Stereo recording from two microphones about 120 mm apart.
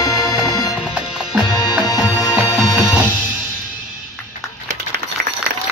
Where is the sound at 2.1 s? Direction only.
25° left (ahead or behind).